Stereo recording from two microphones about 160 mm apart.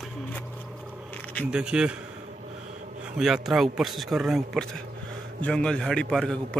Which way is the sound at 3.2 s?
Centre (ahead or behind).